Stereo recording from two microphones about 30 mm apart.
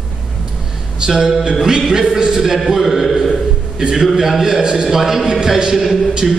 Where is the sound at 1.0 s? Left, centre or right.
Right.